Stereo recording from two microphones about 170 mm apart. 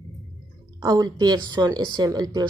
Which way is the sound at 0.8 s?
20° right (ahead or behind).